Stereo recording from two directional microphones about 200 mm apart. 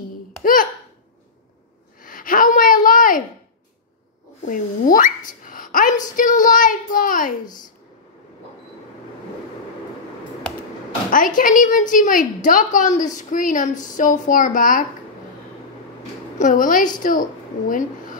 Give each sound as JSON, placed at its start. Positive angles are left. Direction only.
{"t": 0.4, "sound": "babbling", "side_deg": 45}
{"t": 2.0, "sound": "a sound", "side_deg": 45}
{"t": 4.5, "sound": "a woman's voice", "side_deg": 40}
{"t": 7.4, "sound": "a woman's voice", "side_deg": 20}
{"t": 11.1, "sound": "a woman's voice", "side_deg": 45}
{"t": 16.3, "sound": "a woman's voice", "side_deg": 40}